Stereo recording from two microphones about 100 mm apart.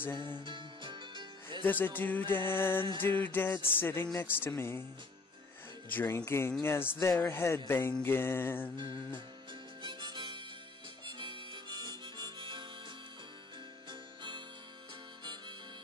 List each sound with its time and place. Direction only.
0.1 s music: 50° right (ahead or behind)
1.6 s speech: 20° left (ahead or behind)
2.0 s music: 20° left (ahead or behind)
5.9 s music: 20° left (ahead or behind)
9.8 s harmonica: 50° right (ahead or behind)
13.8 s music: 50° right (ahead or behind)